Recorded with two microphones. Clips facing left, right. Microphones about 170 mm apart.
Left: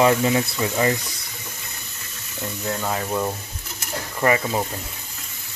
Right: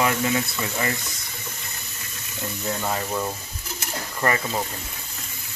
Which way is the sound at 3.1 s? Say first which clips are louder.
Left 3 dB; 15° left (ahead or behind).